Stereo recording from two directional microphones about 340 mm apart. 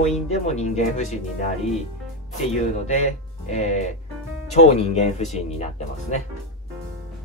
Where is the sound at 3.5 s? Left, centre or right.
Centre.